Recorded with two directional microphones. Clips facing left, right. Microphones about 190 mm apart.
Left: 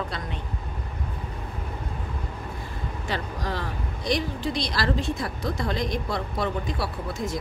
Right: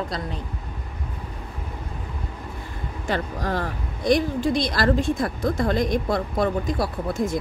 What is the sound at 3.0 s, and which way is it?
A woman's voice, 50° right (ahead or behind).